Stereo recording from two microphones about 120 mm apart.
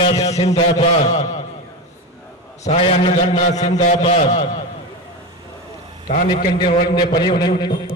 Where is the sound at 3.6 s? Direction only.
70° left (ahead or behind).